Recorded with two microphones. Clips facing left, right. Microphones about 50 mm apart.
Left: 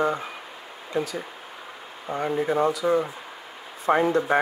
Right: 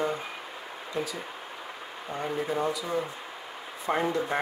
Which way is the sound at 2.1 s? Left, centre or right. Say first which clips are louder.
Left 6 dB; left.